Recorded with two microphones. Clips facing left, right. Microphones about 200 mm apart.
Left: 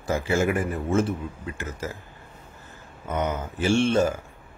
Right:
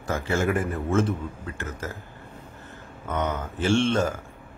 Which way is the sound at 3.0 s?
10° left (ahead or behind).